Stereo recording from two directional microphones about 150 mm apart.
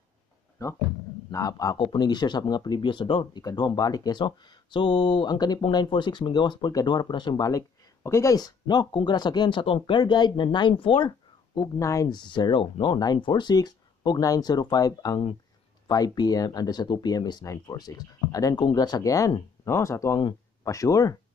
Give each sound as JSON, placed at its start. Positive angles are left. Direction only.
{"t": 0.6, "sound": "speech", "side_deg": 25}